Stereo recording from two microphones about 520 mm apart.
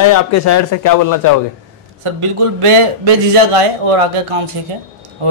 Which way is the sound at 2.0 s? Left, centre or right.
Right.